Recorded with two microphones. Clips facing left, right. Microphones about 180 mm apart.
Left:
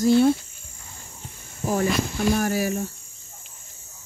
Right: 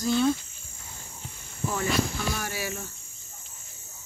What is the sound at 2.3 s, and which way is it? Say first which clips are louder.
Speech: left 10 dB; 45° left (ahead or behind).